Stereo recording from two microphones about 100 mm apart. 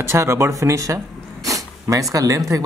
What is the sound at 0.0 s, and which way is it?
Speech, 25° right (ahead or behind).